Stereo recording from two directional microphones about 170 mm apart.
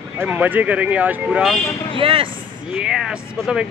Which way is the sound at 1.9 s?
30° right (ahead or behind).